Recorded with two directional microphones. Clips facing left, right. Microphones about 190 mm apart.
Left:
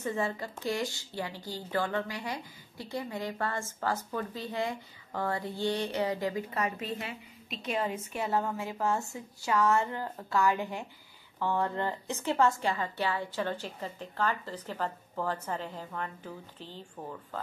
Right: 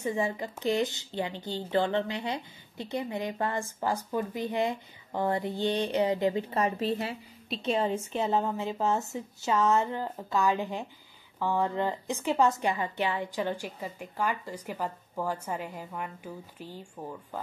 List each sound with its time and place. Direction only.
0.0 s speech: 15° right (ahead or behind)